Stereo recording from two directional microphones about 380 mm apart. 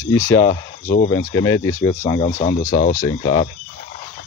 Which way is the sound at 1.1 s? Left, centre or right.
Centre.